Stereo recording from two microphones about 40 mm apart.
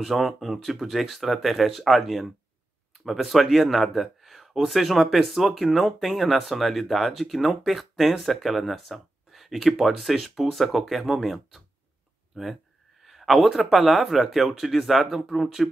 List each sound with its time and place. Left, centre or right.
0.0 s speech: centre